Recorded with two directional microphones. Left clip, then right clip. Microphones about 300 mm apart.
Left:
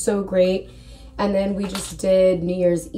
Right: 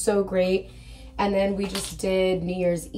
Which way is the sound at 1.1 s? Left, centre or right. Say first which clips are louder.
Left 2 dB; centre.